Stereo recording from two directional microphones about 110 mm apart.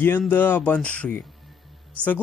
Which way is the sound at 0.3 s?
15° left (ahead or behind).